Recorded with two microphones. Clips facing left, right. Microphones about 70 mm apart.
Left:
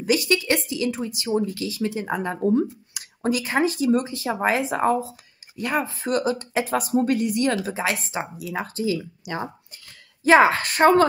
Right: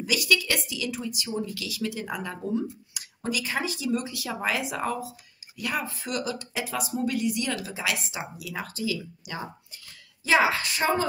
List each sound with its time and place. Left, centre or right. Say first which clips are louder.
0.0 s a woman's voice: left 4 dB; left